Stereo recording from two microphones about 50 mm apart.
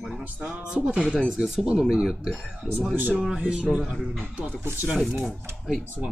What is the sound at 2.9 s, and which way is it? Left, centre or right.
Speech, right.